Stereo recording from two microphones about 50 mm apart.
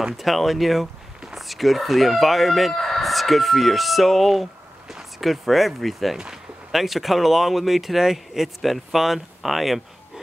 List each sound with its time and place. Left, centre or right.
0.0 s speech: centre
6.1 s speech: centre